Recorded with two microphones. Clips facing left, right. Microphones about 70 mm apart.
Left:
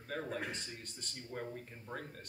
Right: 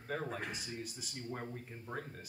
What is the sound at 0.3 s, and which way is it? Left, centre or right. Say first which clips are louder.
Speech: left 1 dB; centre.